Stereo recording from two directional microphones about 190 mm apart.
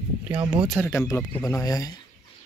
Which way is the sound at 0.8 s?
15° left (ahead or behind).